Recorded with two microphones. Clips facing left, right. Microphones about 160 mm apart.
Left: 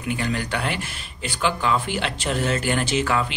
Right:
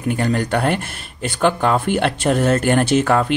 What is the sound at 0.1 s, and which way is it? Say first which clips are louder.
Speech: right 6 dB; 50° right (ahead or behind).